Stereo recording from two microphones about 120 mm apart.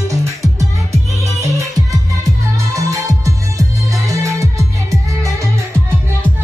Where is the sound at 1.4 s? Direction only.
25° right (ahead or behind).